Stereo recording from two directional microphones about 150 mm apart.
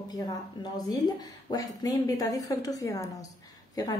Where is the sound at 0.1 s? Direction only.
25° left (ahead or behind).